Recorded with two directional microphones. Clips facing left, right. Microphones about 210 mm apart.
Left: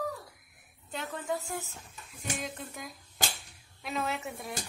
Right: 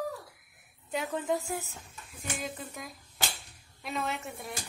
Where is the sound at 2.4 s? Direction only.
Centre (ahead or behind).